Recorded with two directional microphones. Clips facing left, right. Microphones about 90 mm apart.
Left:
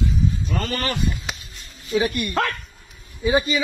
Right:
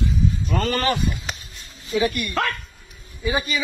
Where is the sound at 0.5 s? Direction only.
55° right (ahead or behind).